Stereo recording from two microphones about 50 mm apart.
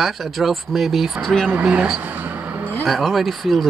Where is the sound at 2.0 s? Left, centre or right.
Right.